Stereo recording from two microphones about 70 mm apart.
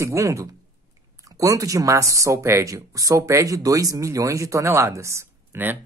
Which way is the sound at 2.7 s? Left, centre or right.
Right.